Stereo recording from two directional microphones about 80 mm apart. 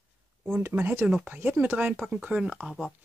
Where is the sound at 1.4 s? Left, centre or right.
Right.